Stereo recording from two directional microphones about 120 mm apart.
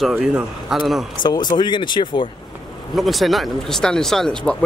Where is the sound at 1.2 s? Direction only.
35° left (ahead or behind).